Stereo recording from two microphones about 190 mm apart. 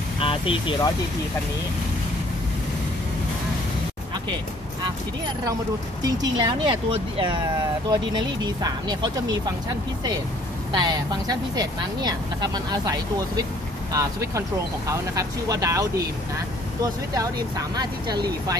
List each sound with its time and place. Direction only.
0.2 s speech: 30° left (ahead or behind)
6.0 s speech: 20° right (ahead or behind)
10.7 s speech: 20° right (ahead or behind)
14.9 s speech: 15° right (ahead or behind)